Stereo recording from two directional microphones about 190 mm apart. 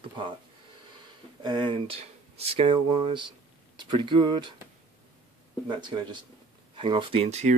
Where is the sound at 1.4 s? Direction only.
25° right (ahead or behind).